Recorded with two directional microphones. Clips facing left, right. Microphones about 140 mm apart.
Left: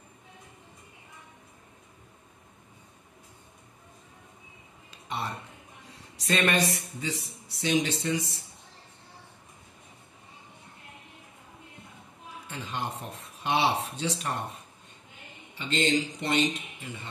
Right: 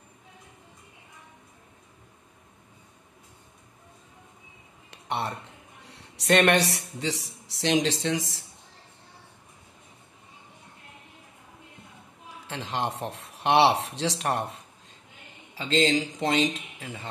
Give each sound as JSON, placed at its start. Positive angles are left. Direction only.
{"t": 4.9, "sound": "a sound", "side_deg": -70}
{"t": 5.9, "sound": "speech", "side_deg": -75}
{"t": 12.4, "sound": "speech", "side_deg": -90}